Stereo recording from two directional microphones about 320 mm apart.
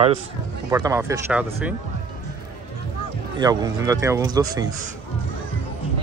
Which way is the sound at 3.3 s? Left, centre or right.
Centre.